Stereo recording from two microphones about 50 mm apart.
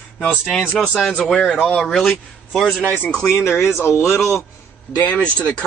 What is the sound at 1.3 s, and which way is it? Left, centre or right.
Speech, centre.